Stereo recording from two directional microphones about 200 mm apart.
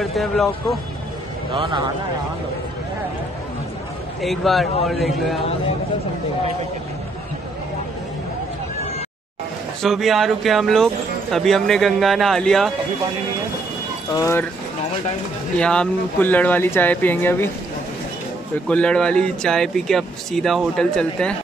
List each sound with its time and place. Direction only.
0.0 s speech: centre (ahead or behind)
1.5 s a man's voice: 25° right (ahead or behind)
4.2 s speech: centre (ahead or behind)
9.8 s speech: centre (ahead or behind)
14.1 s speech: 15° left (ahead or behind)
15.5 s speech: 5° left (ahead or behind)
18.7 s speech: 5° left (ahead or behind)